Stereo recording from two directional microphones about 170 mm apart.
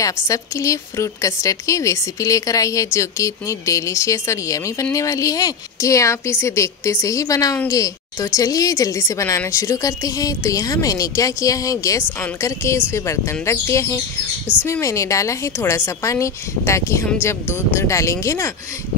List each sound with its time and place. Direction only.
0.3 s a woman's voice: 20° left (ahead or behind)